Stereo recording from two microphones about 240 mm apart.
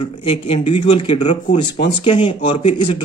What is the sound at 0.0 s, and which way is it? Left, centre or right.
Speech, left.